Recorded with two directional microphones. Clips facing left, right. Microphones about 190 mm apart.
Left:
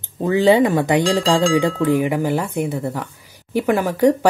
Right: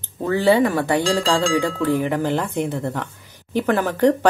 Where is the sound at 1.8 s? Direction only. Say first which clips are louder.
Left 2 dB; 15° left (ahead or behind).